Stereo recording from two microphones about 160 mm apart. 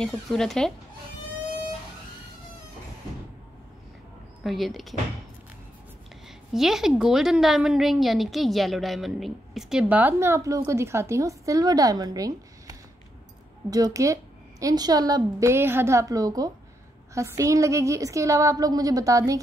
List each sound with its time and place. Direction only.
0.0 s a woman's voice: 5° left (ahead or behind)
4.4 s a woman's voice: centre (ahead or behind)
6.2 s a woman's voice: centre (ahead or behind); by 19.4 s 20° right (ahead or behind)